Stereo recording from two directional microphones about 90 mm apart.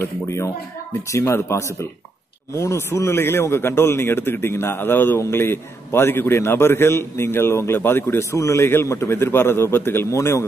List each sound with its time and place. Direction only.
0.0 s a man's voice: 30° left (ahead or behind)